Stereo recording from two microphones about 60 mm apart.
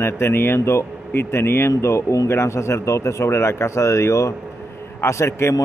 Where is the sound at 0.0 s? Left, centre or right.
Left.